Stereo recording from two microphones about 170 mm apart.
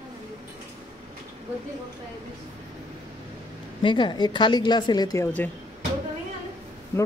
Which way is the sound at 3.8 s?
30° left (ahead or behind).